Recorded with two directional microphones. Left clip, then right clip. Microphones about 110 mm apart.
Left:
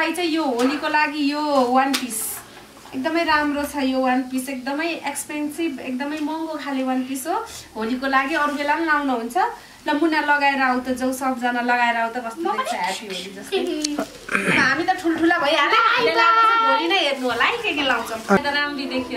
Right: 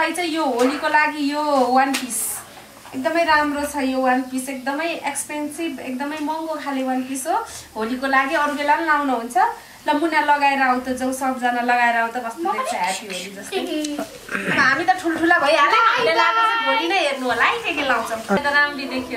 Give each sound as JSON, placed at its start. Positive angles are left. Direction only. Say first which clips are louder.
{"t": 0.0, "sound": "a child's voice", "louder": "right 1 dB", "side_deg": 5}
{"t": 3.0, "sound": "a woman's voice", "louder": "right 2 dB", "side_deg": 5}
{"t": 12.8, "sound": "a child's voice", "louder": "right 2 dB", "side_deg": -5}
{"t": 13.7, "sound": "speech", "louder": "even", "side_deg": 30}
{"t": 14.6, "sound": "a child's voice", "louder": "right 2 dB", "side_deg": 5}